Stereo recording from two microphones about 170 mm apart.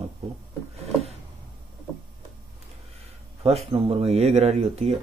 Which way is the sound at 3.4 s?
35° right (ahead or behind).